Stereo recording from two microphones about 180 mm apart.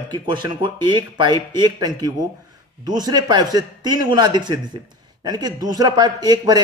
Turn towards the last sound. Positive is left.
turn(degrees=-20)  # may be behind; listen again after turning